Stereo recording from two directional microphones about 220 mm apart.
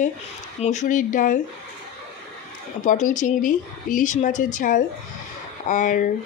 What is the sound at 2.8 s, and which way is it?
A woman's voice, 35° left (ahead or behind).